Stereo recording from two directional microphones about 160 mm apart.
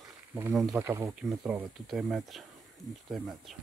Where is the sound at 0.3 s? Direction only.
15° right (ahead or behind).